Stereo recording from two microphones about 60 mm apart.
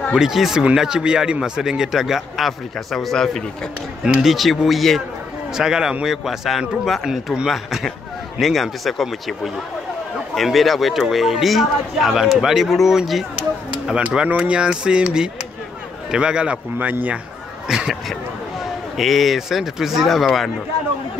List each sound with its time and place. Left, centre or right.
0.1 s a man's voice: centre
4.0 s a man's voice: centre
14.1 s a man's voice: right
16.7 s speech: right
17.6 s a sound: centre
18.9 s speech: centre